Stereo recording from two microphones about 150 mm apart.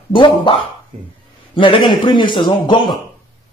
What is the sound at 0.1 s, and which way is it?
A man's voice, 35° left (ahead or behind).